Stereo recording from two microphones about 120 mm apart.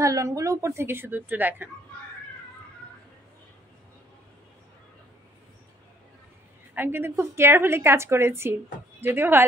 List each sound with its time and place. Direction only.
0.0 s a woman's voice: 25° right (ahead or behind)
6.7 s a woman's voice: 15° right (ahead or behind)